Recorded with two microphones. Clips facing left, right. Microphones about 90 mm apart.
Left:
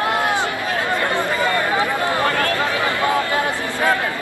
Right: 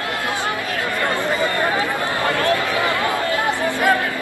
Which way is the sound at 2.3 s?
20° right (ahead or behind).